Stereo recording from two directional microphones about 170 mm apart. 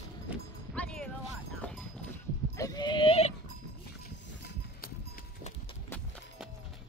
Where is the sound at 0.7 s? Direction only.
5° left (ahead or behind).